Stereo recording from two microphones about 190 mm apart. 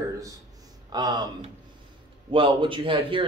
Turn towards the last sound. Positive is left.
turn(degrees=-25)  # may be behind; listen again after turning